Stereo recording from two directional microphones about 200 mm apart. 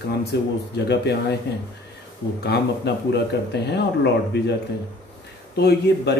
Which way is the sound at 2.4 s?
55° left (ahead or behind).